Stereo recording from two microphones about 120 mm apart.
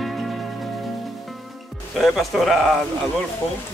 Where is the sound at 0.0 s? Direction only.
Centre (ahead or behind).